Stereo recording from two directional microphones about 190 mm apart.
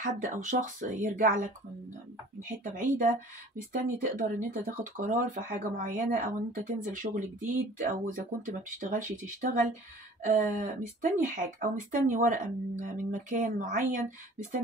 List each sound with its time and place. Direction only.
0.0 s speech: 40° right (ahead or behind)
2.6 s speech: 45° right (ahead or behind)